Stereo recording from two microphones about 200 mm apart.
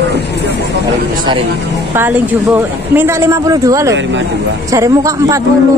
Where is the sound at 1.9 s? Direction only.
10° right (ahead or behind).